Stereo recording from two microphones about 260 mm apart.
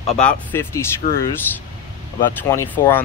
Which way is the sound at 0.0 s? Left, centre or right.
Centre.